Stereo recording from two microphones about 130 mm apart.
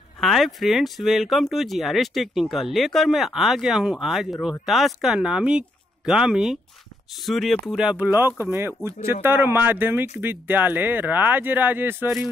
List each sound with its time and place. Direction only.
0.2 s speech: centre (ahead or behind)